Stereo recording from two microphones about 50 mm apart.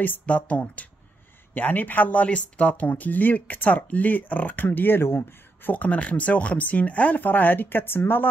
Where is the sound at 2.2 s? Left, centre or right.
Left.